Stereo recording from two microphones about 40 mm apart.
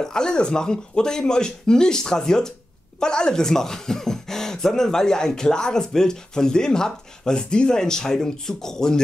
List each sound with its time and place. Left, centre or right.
0.0 s speech: centre